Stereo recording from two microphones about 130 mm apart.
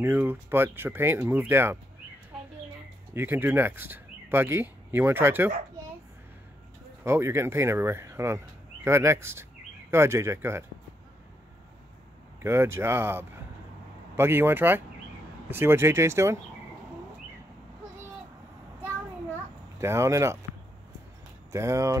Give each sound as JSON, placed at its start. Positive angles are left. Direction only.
{"t": 0.0, "sound": "speech", "side_deg": -15}
{"t": 3.2, "sound": "speech", "side_deg": -15}
{"t": 7.1, "sound": "speech", "side_deg": -20}
{"t": 12.4, "sound": "speech", "side_deg": -20}
{"t": 19.8, "sound": "speech", "side_deg": -20}
{"t": 21.5, "sound": "speech", "side_deg": -20}